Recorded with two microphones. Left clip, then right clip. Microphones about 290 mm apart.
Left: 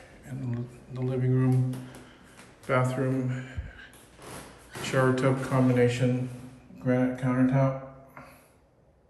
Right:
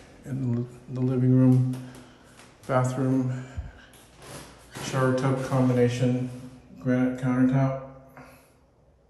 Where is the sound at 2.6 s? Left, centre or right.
Centre.